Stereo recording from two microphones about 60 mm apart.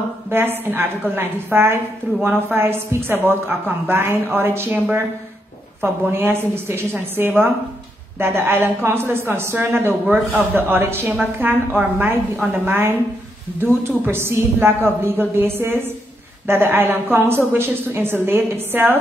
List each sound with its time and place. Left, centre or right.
0.3 s a woman's voice: right
5.8 s a woman's voice: right